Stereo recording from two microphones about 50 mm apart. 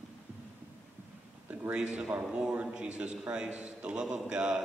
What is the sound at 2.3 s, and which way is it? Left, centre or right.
A man's voice, centre.